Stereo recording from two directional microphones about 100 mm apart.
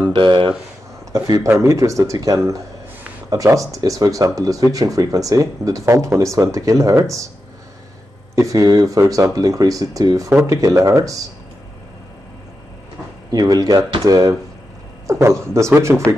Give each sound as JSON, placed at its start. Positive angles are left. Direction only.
{"t": 0.1, "sound": "speech", "side_deg": -55}
{"t": 1.1, "sound": "speech", "side_deg": -40}
{"t": 8.4, "sound": "speech", "side_deg": -35}
{"t": 13.3, "sound": "speech", "side_deg": -40}